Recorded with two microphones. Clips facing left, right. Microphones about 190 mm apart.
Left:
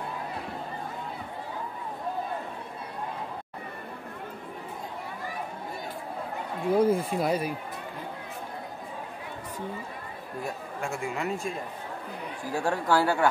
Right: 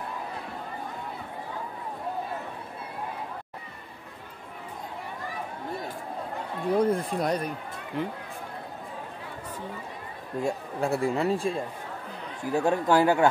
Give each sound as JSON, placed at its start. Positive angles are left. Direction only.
{"t": 6.7, "sound": "speech", "side_deg": 0}
{"t": 10.4, "sound": "speech", "side_deg": -35}
{"t": 12.4, "sound": "speech", "side_deg": -20}